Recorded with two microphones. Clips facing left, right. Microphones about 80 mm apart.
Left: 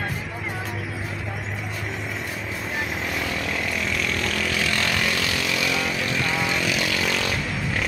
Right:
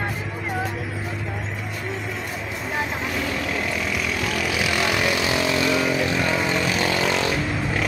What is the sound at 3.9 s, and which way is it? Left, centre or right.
Vehicle, centre.